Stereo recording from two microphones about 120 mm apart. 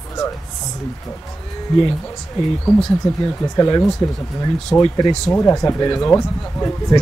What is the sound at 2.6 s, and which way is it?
Speech, 15° left (ahead or behind).